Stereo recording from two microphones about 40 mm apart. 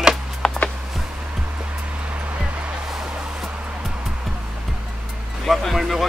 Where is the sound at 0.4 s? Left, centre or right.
Centre.